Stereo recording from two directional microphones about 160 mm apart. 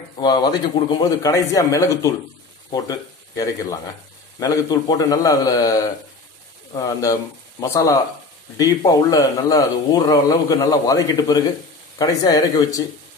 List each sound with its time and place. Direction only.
0.2 s speech: 25° left (ahead or behind)